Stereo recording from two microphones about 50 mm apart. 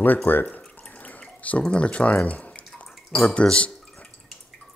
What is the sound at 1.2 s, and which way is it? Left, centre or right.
Speech, left.